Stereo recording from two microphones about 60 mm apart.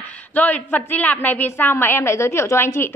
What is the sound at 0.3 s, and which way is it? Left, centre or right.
A woman's voice, left.